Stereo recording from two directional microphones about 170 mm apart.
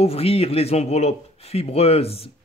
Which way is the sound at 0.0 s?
35° left (ahead or behind).